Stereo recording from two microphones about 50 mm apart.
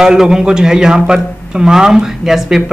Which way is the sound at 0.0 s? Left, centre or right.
Centre.